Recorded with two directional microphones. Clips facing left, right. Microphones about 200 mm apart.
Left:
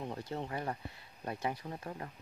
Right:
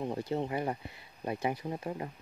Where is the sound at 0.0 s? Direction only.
20° right (ahead or behind).